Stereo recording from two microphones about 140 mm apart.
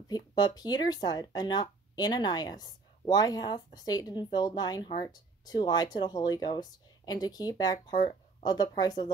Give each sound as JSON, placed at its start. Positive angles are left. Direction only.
{"t": 0.6, "sound": "speech", "side_deg": 30}